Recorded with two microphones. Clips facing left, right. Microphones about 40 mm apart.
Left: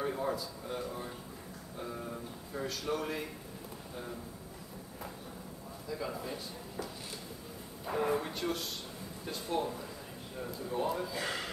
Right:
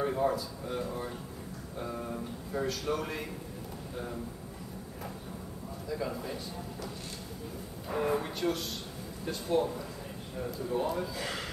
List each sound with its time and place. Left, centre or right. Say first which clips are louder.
0.0 s a man's voice: right 5 dB; centre
5.9 s a man's voice: right 3 dB; centre
7.9 s a man's voice: right 1 dB; centre